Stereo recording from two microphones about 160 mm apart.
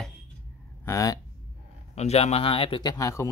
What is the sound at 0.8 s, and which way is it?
Speech, 20° left (ahead or behind).